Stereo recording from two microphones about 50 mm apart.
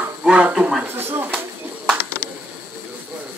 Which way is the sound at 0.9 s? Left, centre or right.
Right.